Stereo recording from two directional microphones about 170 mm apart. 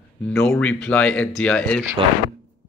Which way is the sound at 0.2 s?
5° left (ahead or behind).